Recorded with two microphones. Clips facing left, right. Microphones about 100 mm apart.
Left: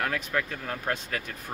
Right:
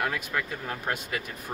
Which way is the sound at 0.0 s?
10° right (ahead or behind).